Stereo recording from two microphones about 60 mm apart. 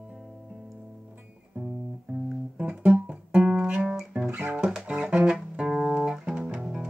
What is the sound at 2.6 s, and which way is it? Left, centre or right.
Guitar, right.